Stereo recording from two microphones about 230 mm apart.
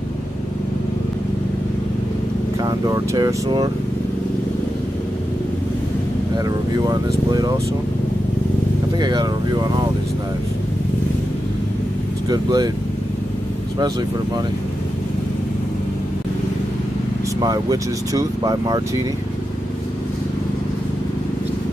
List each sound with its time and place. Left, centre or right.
2.8 s speech: centre
6.9 s speech: centre
9.0 s speech: centre
12.3 s speech: centre
17.4 s speech: centre